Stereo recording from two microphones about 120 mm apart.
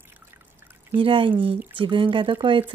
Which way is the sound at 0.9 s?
45° right (ahead or behind).